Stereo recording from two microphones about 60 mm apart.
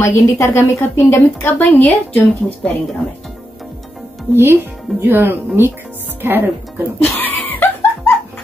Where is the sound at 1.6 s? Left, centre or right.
Left.